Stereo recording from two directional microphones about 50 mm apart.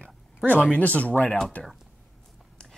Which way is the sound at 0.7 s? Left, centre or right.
Left.